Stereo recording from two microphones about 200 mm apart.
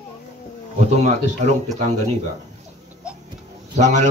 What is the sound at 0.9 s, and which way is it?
Speech, 35° right (ahead or behind).